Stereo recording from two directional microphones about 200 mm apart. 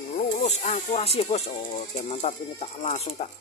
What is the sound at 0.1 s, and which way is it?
Speech, 35° left (ahead or behind).